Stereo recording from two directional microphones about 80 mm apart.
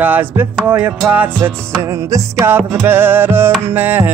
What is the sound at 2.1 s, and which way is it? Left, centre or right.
Music, right.